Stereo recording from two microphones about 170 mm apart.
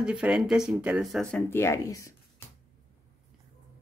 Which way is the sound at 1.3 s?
15° left (ahead or behind).